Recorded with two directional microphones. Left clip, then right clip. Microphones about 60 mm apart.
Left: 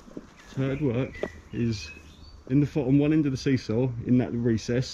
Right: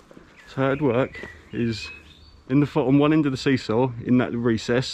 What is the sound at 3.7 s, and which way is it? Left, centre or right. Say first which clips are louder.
Speech: right 5 dB; right.